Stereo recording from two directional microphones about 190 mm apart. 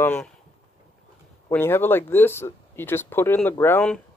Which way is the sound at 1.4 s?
10° left (ahead or behind).